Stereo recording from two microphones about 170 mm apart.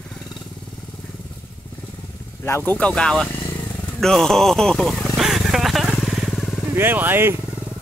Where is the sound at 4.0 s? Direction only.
5° left (ahead or behind).